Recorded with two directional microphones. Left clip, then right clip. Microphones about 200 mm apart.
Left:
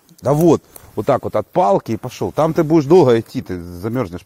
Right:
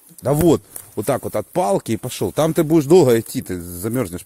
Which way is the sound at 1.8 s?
20° right (ahead or behind).